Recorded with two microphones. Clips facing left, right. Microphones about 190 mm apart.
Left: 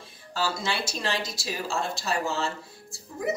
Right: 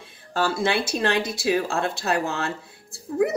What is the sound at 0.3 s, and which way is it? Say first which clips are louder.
Speech: right 6 dB; 55° right (ahead or behind).